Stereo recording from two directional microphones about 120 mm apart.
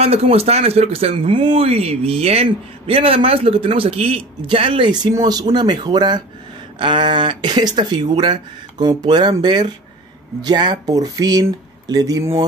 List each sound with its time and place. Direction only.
0.0 s speech: 55° right (ahead or behind); by 12.4 s 25° right (ahead or behind)